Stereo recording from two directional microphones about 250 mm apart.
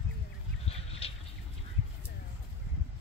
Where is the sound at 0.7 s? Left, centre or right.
Left.